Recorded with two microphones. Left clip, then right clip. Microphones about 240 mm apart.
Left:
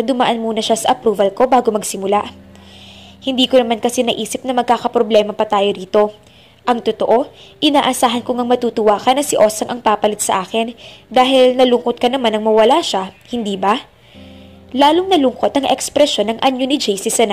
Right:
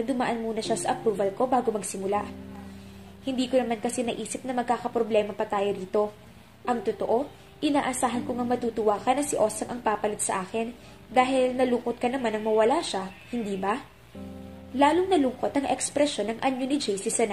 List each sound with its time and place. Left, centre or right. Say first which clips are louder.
0.0 s a woman's voice: left 12 dB; left
3.3 s a woman's voice: left 13 dB; left
14.8 s a woman's voice: left 10 dB; left